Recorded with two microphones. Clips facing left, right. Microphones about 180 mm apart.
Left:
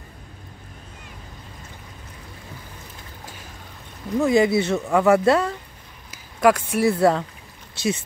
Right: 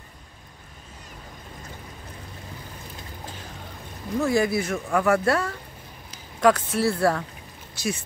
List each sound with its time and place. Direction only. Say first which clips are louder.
4.2 s speech: left 5 dB; 20° left (ahead or behind)
6.1 s speech: left 2 dB; 10° left (ahead or behind)